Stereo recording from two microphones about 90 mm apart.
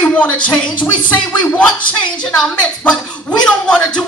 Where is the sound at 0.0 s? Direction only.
15° left (ahead or behind).